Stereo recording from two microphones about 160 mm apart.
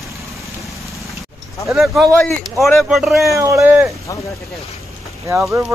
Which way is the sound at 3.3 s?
20° right (ahead or behind).